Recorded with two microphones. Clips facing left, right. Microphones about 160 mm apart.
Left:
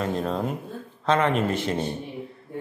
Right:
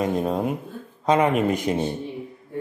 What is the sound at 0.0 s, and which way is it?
A man's voice, 15° right (ahead or behind).